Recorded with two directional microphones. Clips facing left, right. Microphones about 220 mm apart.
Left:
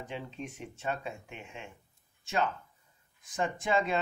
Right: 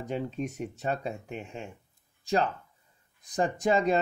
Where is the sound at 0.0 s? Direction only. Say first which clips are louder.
Right 8 dB; 40° right (ahead or behind).